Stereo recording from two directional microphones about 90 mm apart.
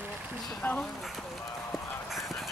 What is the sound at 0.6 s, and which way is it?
Speech, 15° left (ahead or behind).